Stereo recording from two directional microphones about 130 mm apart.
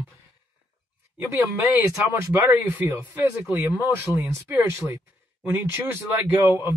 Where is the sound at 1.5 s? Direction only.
20° right (ahead or behind).